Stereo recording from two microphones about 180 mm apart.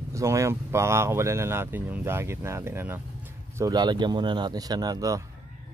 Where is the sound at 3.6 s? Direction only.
25° right (ahead or behind).